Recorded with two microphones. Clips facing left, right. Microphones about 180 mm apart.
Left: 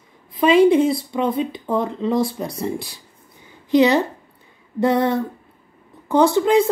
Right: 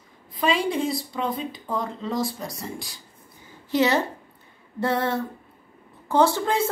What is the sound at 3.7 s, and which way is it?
A woman's voice, 15° left (ahead or behind).